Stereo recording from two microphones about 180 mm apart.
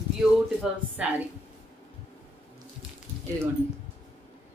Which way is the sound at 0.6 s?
10° right (ahead or behind).